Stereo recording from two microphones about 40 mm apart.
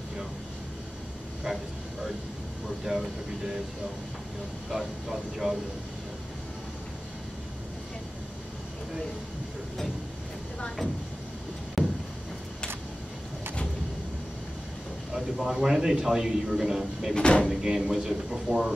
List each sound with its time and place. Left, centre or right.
1.4 s vehicle: centre
2.9 s speech: centre
4.6 s speech: centre
11.8 s vehicle: centre
15.1 s a sound: centre
15.5 s speech: centre
17.1 s speech: left
17.5 s speech: centre